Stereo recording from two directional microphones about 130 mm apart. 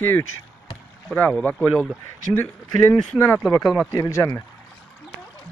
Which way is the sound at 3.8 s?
25° left (ahead or behind).